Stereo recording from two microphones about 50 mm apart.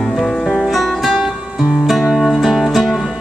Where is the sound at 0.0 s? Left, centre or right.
Centre.